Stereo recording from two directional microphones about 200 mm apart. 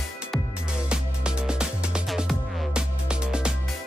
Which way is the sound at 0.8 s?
5° right (ahead or behind).